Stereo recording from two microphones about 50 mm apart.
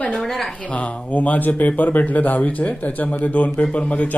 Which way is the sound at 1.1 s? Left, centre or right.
Left.